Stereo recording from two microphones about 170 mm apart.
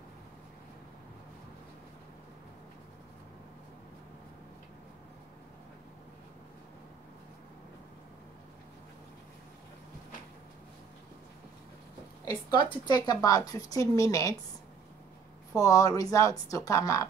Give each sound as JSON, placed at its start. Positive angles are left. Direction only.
{"t": 12.3, "sound": "a woman's voice", "side_deg": 25}
{"t": 15.5, "sound": "a woman's voice", "side_deg": 20}